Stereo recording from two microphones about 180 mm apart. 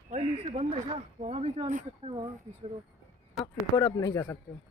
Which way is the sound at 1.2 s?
35° right (ahead or behind).